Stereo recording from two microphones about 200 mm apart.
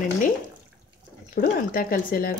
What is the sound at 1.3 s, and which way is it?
Speech, 45° left (ahead or behind).